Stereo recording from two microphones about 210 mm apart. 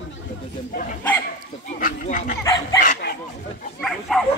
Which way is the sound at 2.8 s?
45° left (ahead or behind).